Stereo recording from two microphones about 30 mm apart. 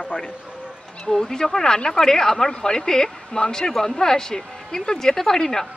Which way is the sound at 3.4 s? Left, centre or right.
Left.